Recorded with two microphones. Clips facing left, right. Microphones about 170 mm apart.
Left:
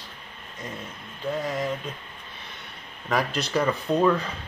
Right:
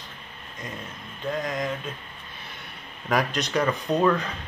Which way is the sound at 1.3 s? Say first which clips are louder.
Left 1 dB; 15° right (ahead or behind).